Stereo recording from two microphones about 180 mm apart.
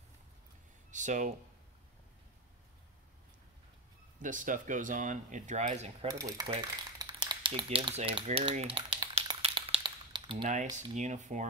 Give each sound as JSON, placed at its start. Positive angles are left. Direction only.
{"t": 0.9, "sound": "speech", "side_deg": -45}
{"t": 4.2, "sound": "speech", "side_deg": -45}
{"t": 6.0, "sound": "speech", "side_deg": -20}
{"t": 8.7, "sound": "a sound", "side_deg": -30}
{"t": 10.5, "sound": "speech", "side_deg": -40}